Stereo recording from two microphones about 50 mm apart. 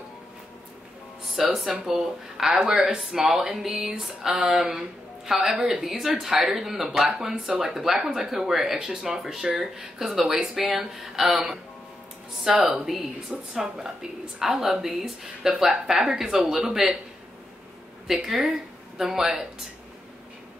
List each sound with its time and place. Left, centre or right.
1.3 s speech: centre
12.5 s speech: centre
18.0 s speech: centre